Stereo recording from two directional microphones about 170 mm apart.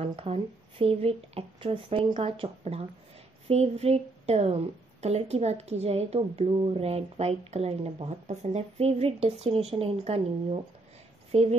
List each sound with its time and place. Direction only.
0.0 s speech: 35° right (ahead or behind)